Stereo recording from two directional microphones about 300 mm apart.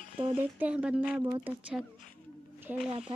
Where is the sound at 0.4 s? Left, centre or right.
Centre.